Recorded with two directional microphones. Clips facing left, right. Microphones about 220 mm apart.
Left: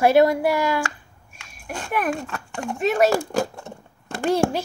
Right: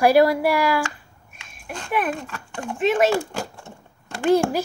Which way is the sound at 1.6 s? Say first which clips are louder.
Even; 40° left (ahead or behind).